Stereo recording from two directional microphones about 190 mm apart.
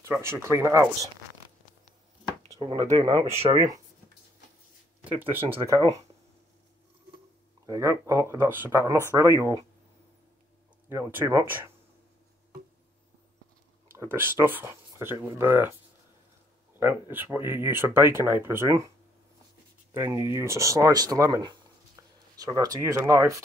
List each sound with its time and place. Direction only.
0.0 s speech: 15° right (ahead or behind)
2.6 s speech: 20° right (ahead or behind)
5.0 s speech: 10° right (ahead or behind)
7.6 s speech: 15° right (ahead or behind)
10.9 s speech: 10° right (ahead or behind)
13.9 s speech: 10° right (ahead or behind)
16.7 s speech: 10° right (ahead or behind)
19.9 s speech: 15° right (ahead or behind)